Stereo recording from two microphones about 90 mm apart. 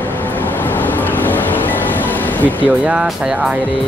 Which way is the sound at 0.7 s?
20° left (ahead or behind).